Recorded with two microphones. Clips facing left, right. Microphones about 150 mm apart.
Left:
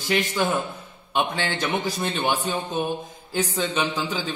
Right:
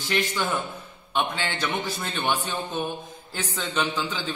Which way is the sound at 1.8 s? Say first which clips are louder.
Left 3 dB; 20° left (ahead or behind).